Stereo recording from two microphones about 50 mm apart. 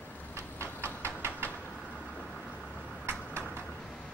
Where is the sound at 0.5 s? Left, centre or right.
Right.